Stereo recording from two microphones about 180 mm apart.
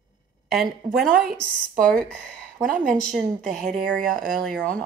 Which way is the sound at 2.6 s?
50° right (ahead or behind).